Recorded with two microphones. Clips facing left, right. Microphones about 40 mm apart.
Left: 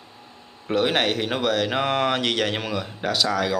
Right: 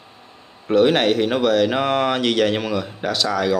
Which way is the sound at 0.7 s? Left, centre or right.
Centre.